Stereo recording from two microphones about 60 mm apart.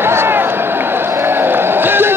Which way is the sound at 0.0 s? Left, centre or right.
Right.